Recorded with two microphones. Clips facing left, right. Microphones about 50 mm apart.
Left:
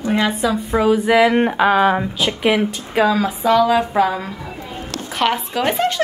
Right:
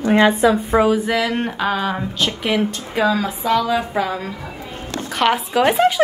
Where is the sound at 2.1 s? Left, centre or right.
Centre.